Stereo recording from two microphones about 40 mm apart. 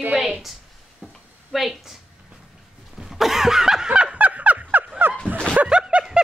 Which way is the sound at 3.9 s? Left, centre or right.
Right.